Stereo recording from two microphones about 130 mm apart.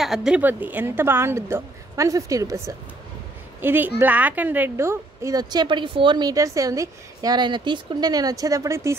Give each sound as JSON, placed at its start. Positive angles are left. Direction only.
{"t": 0.0, "sound": "a woman's voice", "side_deg": -5}